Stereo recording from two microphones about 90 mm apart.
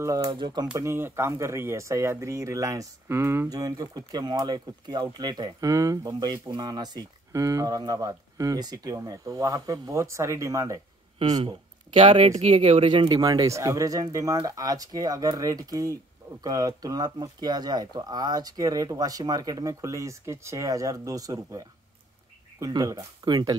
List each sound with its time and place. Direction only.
0.0 s speech: 40° right (ahead or behind)
0.3 s speech: 60° right (ahead or behind)
0.7 s speech: 30° right (ahead or behind)
3.4 s speech: 45° right (ahead or behind)
7.3 s speech: 35° right (ahead or behind)
11.4 s speech: 75° right (ahead or behind)
13.1 s speech: 45° right (ahead or behind)